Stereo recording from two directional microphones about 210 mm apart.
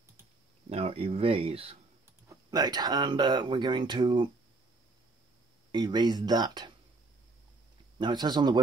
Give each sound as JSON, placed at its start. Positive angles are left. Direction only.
{"t": 0.7, "sound": "speech", "side_deg": -25}
{"t": 5.7, "sound": "speech", "side_deg": -20}
{"t": 8.0, "sound": "speech", "side_deg": -20}